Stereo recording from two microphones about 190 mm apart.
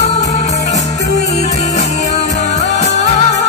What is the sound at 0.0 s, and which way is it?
Music, 35° left (ahead or behind).